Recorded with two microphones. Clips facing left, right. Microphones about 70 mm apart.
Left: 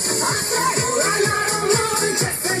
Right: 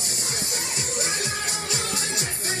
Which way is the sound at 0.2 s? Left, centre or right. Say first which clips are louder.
Left 13 dB; left.